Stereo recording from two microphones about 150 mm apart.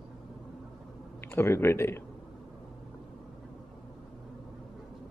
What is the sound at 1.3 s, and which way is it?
Speech, 15° left (ahead or behind).